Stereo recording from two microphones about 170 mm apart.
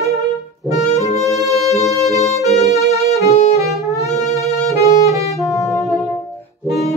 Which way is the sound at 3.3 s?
40° left (ahead or behind).